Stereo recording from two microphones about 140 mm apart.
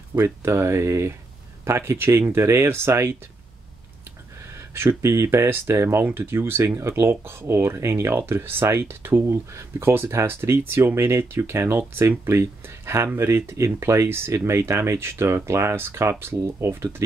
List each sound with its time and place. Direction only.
0.1 s speech: 20° right (ahead or behind)
4.7 s speech: 20° right (ahead or behind)